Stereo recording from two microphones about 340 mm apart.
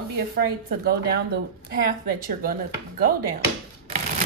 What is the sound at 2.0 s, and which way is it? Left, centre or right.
A woman's voice, right.